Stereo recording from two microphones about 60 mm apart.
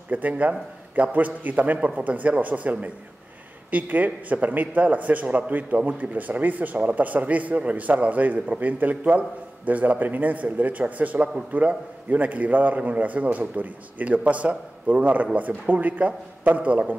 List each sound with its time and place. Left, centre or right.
0.1 s speech: right